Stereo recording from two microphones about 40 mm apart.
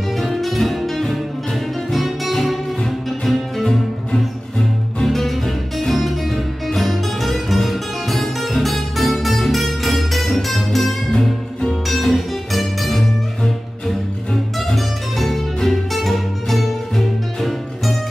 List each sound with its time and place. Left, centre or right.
0.2 s music: centre
3.6 s music: centre
5.0 s music: centre
11.1 s music: centre
11.9 s music: centre